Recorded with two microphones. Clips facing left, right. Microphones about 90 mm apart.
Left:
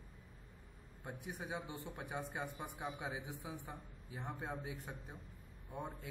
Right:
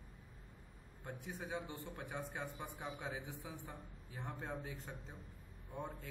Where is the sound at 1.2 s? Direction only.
15° left (ahead or behind).